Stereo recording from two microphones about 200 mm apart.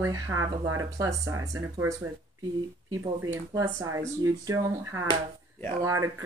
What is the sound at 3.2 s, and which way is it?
Speech, 15° right (ahead or behind).